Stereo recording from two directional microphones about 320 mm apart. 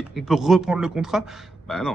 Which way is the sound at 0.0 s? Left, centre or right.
Centre.